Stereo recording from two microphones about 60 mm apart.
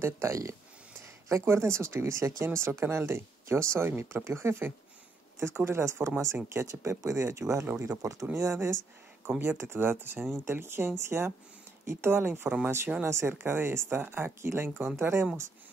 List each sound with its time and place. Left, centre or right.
0.0 s speech: right
0.9 s speech: right
6.5 s speech: right
7.6 s speech: right
8.0 s speech: right
8.4 s speech: right
13.3 s speech: right